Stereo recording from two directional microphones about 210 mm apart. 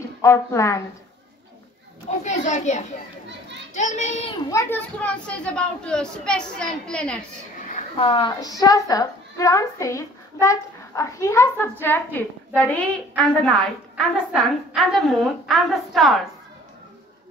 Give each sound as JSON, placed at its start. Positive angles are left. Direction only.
{"t": 0.2, "sound": "speech", "side_deg": 15}
{"t": 2.0, "sound": "a child's voice", "side_deg": 35}
{"t": 4.5, "sound": "a woman's voice", "side_deg": 10}
{"t": 7.7, "sound": "a woman's voice", "side_deg": 25}